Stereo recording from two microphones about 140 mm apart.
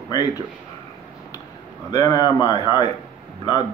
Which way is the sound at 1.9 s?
25° left (ahead or behind).